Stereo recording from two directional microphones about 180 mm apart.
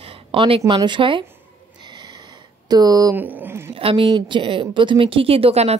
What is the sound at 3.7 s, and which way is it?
A woman's voice, 30° right (ahead or behind).